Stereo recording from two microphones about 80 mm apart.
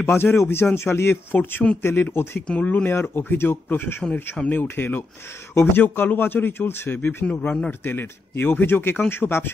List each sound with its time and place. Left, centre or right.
0.0 s a man's voice: left
2.4 s a man's voice: centre